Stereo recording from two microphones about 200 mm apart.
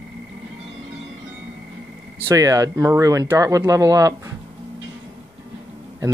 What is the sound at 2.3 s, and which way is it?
Speech, 15° right (ahead or behind).